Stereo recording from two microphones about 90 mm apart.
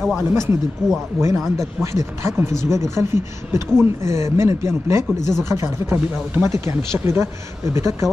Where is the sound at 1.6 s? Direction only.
35° right (ahead or behind).